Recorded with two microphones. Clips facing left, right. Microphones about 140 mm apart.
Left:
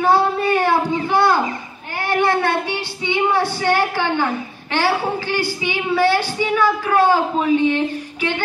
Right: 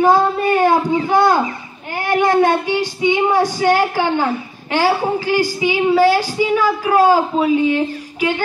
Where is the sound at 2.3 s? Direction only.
45° right (ahead or behind).